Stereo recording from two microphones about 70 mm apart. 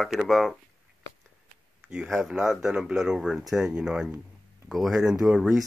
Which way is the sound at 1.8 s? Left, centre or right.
Right.